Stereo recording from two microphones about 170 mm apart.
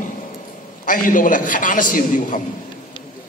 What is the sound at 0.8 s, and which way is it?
A man's voice, 50° left (ahead or behind).